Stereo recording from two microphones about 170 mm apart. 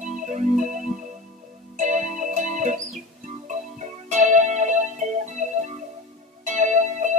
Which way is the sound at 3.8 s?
45° right (ahead or behind).